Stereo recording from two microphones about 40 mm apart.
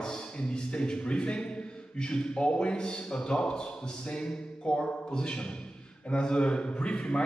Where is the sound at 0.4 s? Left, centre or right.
Left.